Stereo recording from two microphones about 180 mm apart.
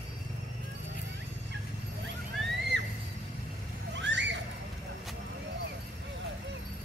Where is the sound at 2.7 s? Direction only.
90° right.